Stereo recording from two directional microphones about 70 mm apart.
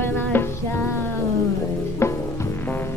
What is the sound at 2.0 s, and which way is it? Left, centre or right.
Music, left.